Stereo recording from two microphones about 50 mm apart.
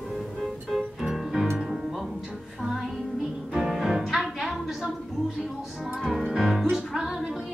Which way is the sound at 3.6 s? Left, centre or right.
Centre.